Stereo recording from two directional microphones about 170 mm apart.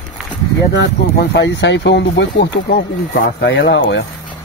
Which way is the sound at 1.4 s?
90° left.